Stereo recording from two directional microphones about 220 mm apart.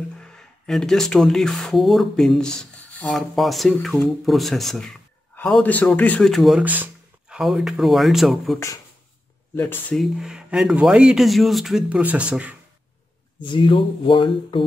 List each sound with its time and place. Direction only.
0.2 s speech: 5° left (ahead or behind)
9.6 s speech: 10° left (ahead or behind)
13.4 s speech: 20° left (ahead or behind)